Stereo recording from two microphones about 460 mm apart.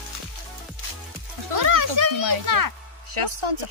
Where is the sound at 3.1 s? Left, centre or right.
Right.